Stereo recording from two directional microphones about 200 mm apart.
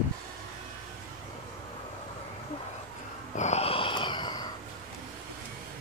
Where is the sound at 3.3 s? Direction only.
35° left (ahead or behind).